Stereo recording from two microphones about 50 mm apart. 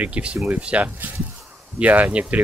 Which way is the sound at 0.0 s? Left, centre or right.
Right.